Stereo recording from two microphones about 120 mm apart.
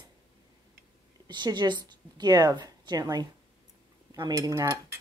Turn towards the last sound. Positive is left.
turn(degrees=-25)  # may be behind; listen again after turning